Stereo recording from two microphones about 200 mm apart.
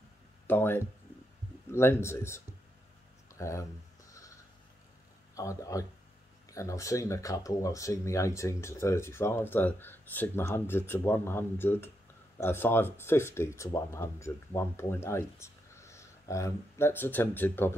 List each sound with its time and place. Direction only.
0.5 s speech: 10° left (ahead or behind)
3.3 s a sound: 15° left (ahead or behind)
5.3 s speech: 15° left (ahead or behind)